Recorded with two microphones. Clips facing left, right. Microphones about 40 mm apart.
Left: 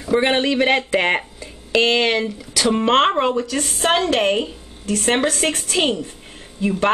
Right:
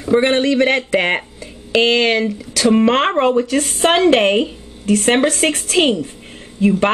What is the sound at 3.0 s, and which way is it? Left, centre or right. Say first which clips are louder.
Speech: right 2 dB; centre.